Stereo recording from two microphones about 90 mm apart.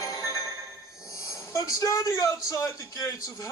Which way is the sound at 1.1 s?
35° left (ahead or behind).